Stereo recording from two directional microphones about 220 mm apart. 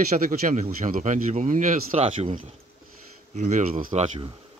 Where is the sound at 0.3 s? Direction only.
35° right (ahead or behind).